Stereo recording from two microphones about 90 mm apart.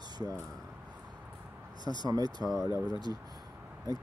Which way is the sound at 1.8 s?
55° left (ahead or behind).